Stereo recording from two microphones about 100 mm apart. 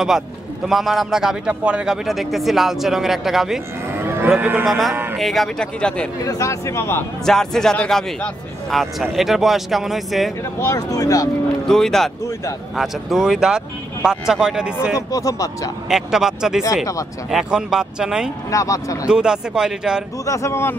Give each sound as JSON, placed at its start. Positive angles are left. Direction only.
{"t": 0.7, "sound": "a man's voice", "side_deg": 0}
{"t": 4.0, "sound": "cattle", "side_deg": -25}
{"t": 4.4, "sound": "speech", "side_deg": -20}
{"t": 4.6, "sound": "a man's voice", "side_deg": 0}
{"t": 6.2, "sound": "speech", "side_deg": 35}
{"t": 7.2, "sound": "a man's voice", "side_deg": 5}
{"t": 10.6, "sound": "speech", "side_deg": 35}
{"t": 11.6, "sound": "a man's voice", "side_deg": 5}
{"t": 15.0, "sound": "speech", "side_deg": 35}
{"t": 15.9, "sound": "a man's voice", "side_deg": -5}
{"t": 18.5, "sound": "speech", "side_deg": 35}
{"t": 19.0, "sound": "speech", "side_deg": -10}
{"t": 20.2, "sound": "a man's voice", "side_deg": 30}